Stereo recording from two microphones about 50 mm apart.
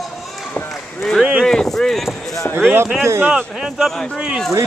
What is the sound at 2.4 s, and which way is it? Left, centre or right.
Speech, left.